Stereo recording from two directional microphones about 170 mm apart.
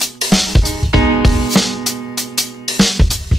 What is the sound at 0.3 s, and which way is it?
Music, centre (ahead or behind).